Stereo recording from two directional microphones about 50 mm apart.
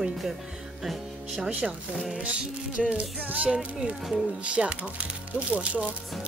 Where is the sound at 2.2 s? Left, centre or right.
Right.